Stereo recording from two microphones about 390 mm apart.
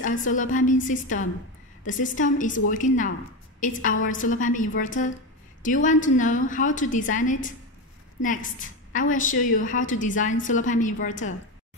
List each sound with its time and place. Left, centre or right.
0.0 s a woman's voice: centre